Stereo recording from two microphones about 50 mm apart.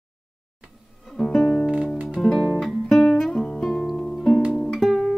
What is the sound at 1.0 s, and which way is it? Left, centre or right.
Music, centre.